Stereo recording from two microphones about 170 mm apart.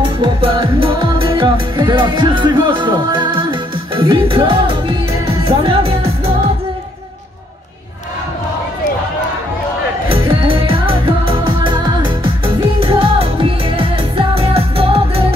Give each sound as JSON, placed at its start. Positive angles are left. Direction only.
{"t": 0.0, "sound": "music", "side_deg": -30}
{"t": 10.0, "sound": "music", "side_deg": -35}